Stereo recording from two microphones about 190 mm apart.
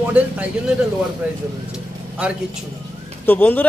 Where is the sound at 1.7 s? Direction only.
5° right (ahead or behind).